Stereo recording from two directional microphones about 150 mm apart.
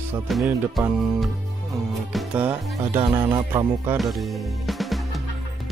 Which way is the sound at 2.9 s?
30° right (ahead or behind).